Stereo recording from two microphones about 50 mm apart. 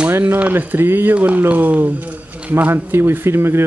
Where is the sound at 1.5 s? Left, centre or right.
Right.